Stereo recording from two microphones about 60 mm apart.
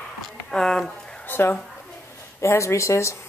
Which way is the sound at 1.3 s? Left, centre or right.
Left.